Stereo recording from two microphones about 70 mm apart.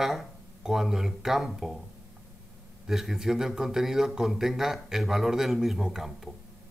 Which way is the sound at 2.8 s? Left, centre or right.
Centre.